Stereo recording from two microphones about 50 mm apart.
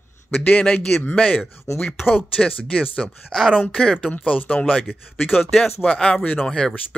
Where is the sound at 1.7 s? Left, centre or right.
Left.